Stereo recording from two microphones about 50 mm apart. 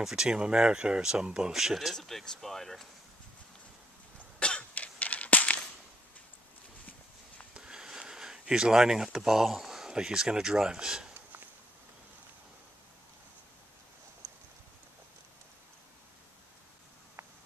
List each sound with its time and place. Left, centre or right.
0.0 s speech: centre
2.0 s speech: centre
4.4 s cough: left
7.5 s speech: centre